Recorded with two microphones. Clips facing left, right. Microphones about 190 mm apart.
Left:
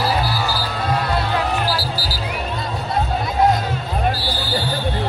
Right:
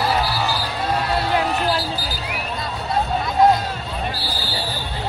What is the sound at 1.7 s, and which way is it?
Music, 20° right (ahead or behind).